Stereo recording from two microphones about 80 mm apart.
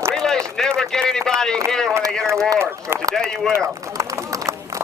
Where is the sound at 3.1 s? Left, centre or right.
Centre.